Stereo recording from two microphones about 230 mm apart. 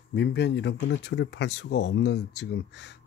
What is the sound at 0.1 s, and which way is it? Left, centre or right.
Speech, left.